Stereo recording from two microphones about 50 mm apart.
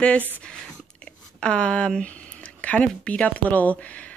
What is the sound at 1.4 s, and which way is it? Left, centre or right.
Speech, left.